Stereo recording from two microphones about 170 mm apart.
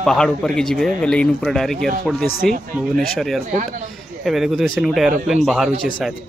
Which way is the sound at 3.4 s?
50° right (ahead or behind).